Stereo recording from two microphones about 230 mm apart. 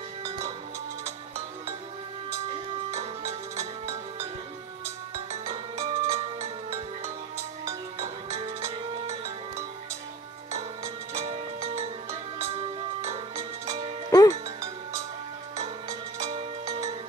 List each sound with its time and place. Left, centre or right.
0.2 s music: centre
2.9 s music: right
5.1 s music: right
8.5 s music: centre
9.0 s music: right
11.1 s music: right
14.1 s music: centre
14.6 s music: centre
16.3 s music: right